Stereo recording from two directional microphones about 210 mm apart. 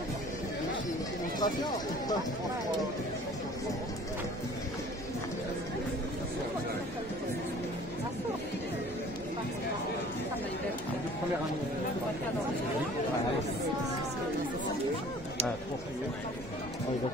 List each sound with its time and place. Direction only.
1.4 s speech: 20° left (ahead or behind)